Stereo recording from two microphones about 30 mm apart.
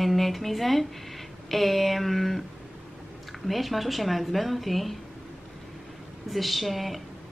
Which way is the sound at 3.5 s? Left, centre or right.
Centre.